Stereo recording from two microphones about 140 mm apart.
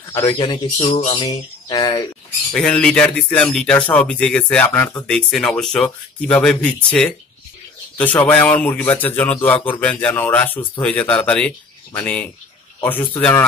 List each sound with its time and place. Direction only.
0.3 s speech: 35° left (ahead or behind)
1.2 s a sound: 30° left (ahead or behind)
2.5 s a man's voice: 5° left (ahead or behind)